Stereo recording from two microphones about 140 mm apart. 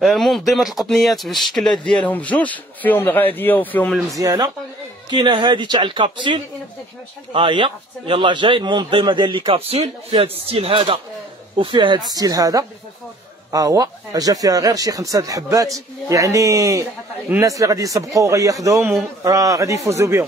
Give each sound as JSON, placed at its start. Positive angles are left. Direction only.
{"t": 0.0, "sound": "speech", "side_deg": 0}
{"t": 4.1, "sound": "a man's voice", "side_deg": -25}